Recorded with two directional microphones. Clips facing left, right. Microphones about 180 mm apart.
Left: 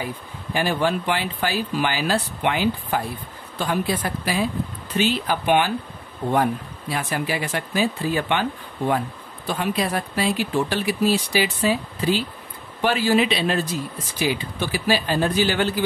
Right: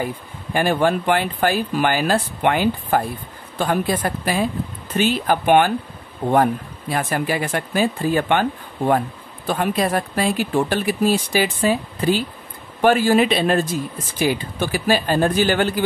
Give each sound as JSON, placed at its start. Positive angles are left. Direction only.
{"t": 0.0, "sound": "speech", "side_deg": -50}